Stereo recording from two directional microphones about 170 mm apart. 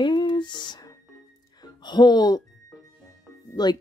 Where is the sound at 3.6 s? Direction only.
25° left (ahead or behind).